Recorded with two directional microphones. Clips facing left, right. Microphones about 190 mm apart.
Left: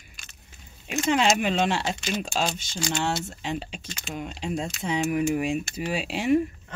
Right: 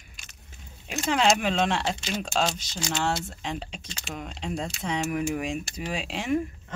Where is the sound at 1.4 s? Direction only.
5° left (ahead or behind).